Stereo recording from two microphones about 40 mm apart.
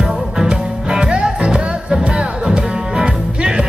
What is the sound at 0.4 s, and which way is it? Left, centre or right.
Music, centre.